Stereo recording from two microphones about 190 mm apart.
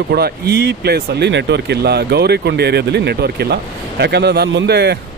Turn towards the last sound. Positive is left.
turn(degrees=-60)  # may be behind; listen again after turning